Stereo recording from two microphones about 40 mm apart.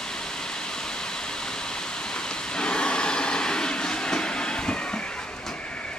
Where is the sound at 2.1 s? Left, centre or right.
Centre.